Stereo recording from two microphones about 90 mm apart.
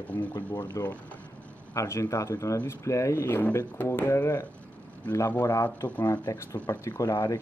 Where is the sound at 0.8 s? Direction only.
40° left (ahead or behind).